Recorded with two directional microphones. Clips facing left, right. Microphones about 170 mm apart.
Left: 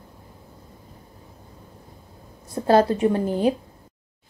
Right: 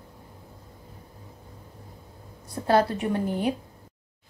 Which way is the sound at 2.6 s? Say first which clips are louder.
Left 5 dB; 30° left (ahead or behind).